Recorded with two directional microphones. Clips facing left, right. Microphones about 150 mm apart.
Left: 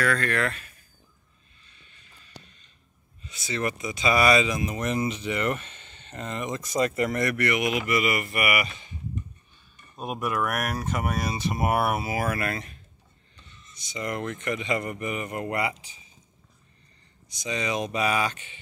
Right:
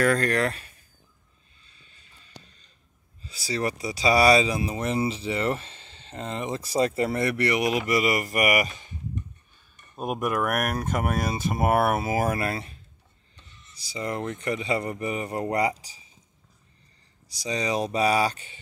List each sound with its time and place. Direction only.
0.0 s speech: 40° right (ahead or behind)
1.6 s music: 30° right (ahead or behind)
3.3 s speech: 35° right (ahead or behind)
10.2 s speech: 45° right (ahead or behind); by 12.7 s 30° right (ahead or behind)
13.7 s speech: 30° right (ahead or behind)
17.3 s speech: 35° right (ahead or behind)